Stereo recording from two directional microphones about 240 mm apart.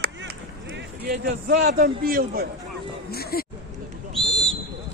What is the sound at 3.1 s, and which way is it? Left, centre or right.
Speech, left.